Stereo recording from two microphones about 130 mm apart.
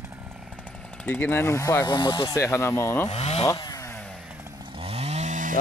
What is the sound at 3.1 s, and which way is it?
Speech, 55° left (ahead or behind).